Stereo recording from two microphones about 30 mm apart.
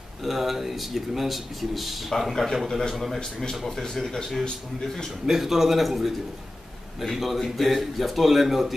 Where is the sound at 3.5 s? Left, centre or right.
Centre.